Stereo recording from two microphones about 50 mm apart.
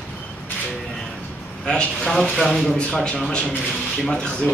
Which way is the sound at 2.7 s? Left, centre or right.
Centre.